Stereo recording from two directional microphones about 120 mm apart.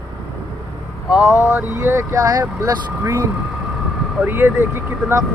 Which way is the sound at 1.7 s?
25° right (ahead or behind).